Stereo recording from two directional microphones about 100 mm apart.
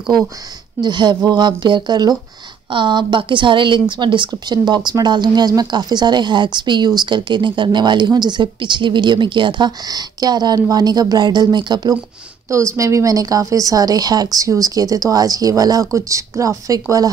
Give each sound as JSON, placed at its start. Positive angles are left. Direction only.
{"t": 0.7, "sound": "a woman's voice", "side_deg": -50}
{"t": 12.4, "sound": "speech", "side_deg": -30}